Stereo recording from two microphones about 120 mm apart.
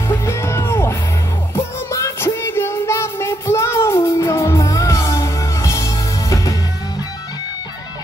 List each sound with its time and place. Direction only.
0.1 s music: 25° left (ahead or behind)